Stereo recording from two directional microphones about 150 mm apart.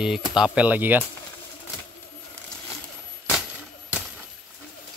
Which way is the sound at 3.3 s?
5° right (ahead or behind).